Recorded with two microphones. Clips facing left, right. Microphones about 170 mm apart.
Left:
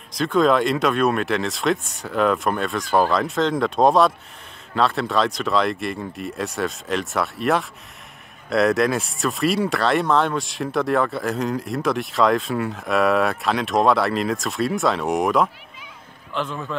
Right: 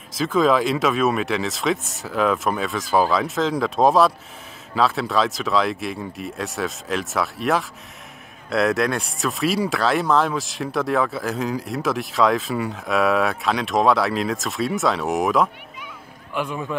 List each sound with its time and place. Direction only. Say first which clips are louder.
0.1 s speech: left 1 dB; centre (ahead or behind)
16.3 s speech: right 1 dB; 10° right (ahead or behind)